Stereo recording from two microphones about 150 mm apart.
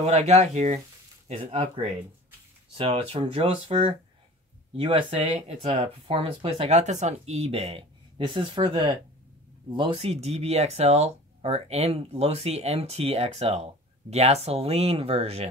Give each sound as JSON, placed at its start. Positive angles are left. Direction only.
{"t": 0.0, "sound": "speech", "side_deg": -45}
{"t": 2.7, "sound": "speech", "side_deg": -40}
{"t": 8.3, "sound": "speech", "side_deg": -35}